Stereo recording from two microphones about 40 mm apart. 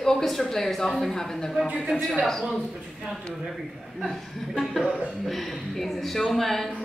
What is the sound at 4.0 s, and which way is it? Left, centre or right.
Speech, centre.